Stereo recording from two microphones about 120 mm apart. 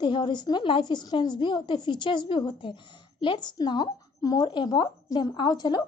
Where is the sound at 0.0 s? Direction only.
40° left (ahead or behind).